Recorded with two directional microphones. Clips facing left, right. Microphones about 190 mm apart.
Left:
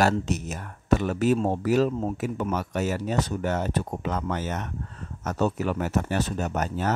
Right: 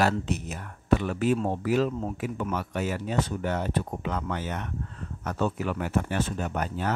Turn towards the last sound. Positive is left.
turn(degrees=40)  # may be behind; listen again after turning